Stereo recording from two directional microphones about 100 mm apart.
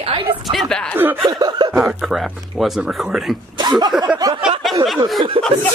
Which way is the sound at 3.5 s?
45° right (ahead or behind).